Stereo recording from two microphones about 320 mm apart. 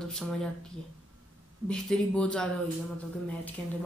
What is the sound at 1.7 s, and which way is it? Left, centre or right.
Speech, centre.